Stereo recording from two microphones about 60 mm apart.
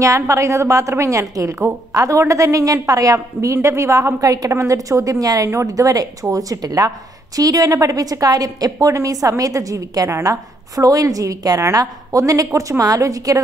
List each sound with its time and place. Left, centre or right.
0.0 s a woman's voice: right
7.3 s a woman's voice: right